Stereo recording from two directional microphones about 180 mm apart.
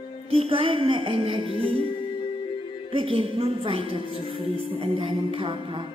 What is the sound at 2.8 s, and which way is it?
Music, 30° right (ahead or behind).